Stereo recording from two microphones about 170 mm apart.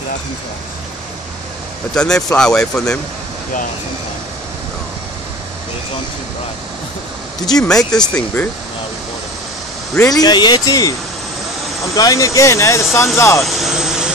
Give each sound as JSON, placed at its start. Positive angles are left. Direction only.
{"t": 2.0, "sound": "speech", "side_deg": 5}
{"t": 7.6, "sound": "speech", "side_deg": 5}
{"t": 9.9, "sound": "speech", "side_deg": 20}
{"t": 13.4, "sound": "speech", "side_deg": 0}